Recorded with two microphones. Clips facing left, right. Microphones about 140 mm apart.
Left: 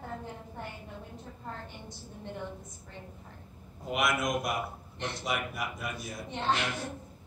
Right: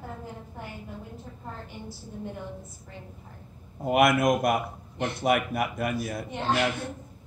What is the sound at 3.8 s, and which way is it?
A man's voice, 55° right (ahead or behind).